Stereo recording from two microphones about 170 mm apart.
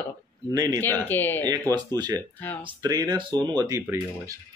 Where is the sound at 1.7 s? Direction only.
25° right (ahead or behind).